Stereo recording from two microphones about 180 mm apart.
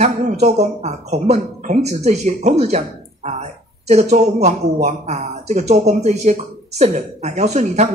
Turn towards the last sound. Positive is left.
turn(degrees=-40)  # may be behind; listen again after turning